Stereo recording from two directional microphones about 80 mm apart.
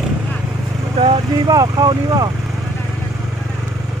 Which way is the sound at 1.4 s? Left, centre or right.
Right.